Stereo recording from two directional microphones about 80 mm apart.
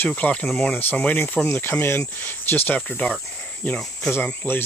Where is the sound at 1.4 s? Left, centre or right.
Left; by 4.1 s centre.